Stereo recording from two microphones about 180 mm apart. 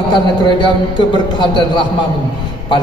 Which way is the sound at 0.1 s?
25° left (ahead or behind).